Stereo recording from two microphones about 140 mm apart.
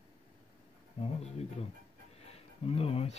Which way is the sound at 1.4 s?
50° left (ahead or behind).